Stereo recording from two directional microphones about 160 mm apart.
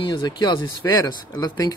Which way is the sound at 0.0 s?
25° left (ahead or behind).